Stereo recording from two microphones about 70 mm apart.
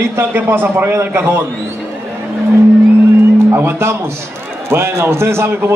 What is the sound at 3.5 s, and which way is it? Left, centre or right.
A man's voice, right.